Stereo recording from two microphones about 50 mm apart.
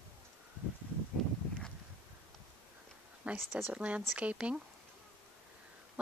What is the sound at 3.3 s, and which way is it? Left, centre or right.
Speech, right.